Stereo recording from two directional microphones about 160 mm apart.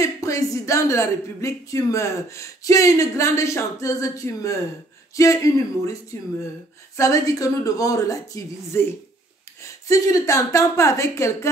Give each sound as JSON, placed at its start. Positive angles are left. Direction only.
{"t": 0.0, "sound": "speech", "side_deg": 20}